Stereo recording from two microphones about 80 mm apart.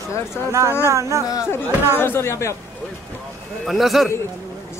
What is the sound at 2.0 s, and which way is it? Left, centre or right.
Speech, left.